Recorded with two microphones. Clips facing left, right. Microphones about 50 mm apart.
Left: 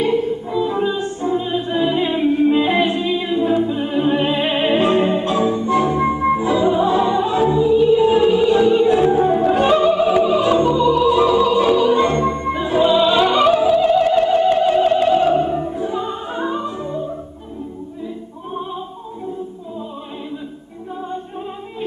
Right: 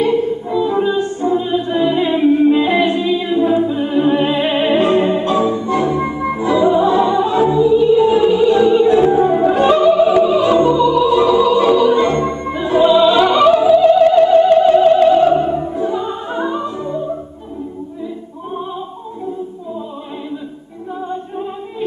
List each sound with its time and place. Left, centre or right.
0.1 s music: centre
1.7 s music: centre
3.0 s a capella: centre
3.3 s choir: centre
3.6 s music: centre
6.6 s music: centre
9.5 s opera: centre
10.8 s opera: centre
11.1 s music: centre
12.0 s music: centre
16.1 s opera: centre
16.4 s opera: centre